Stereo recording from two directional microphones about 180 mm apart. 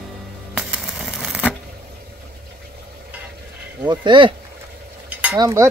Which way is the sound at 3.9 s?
25° right (ahead or behind).